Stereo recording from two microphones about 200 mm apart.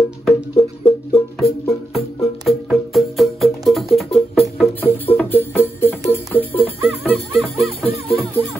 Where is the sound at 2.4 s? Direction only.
Centre (ahead or behind).